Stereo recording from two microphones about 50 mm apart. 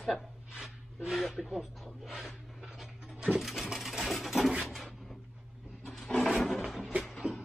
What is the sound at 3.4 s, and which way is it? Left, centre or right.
Sewing machine, centre.